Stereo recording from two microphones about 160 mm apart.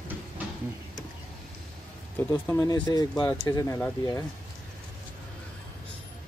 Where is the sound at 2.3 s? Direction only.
25° left (ahead or behind).